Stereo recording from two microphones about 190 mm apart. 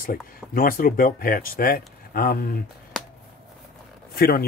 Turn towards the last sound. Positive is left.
turn(degrees=55)  # may be behind; listen again after turning